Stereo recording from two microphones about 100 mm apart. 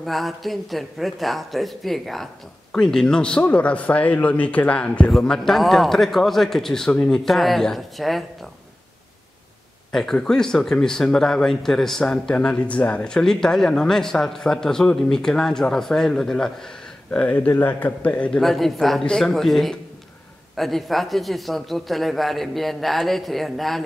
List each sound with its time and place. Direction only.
0.0 s a man's voice: centre (ahead or behind)
9.9 s a man's voice: 5° left (ahead or behind)
18.4 s speech: centre (ahead or behind)